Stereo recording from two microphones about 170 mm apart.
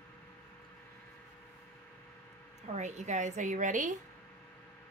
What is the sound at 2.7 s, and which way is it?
Speech, 45° right (ahead or behind).